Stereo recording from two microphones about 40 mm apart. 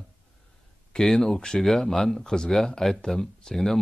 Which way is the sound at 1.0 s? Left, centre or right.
Centre.